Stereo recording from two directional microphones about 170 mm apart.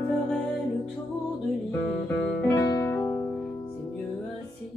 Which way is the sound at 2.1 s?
15° left (ahead or behind).